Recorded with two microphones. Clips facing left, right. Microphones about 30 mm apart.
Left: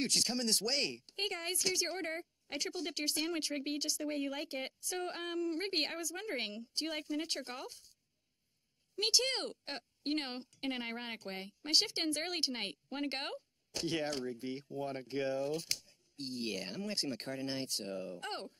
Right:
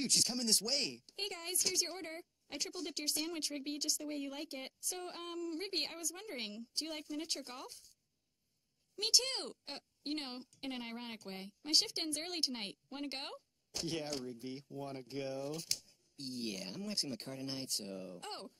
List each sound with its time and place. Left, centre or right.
0.0 s a woman's voice: left
8.9 s a woman's voice: left